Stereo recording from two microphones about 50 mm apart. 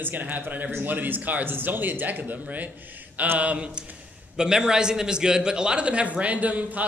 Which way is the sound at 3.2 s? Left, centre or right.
Right.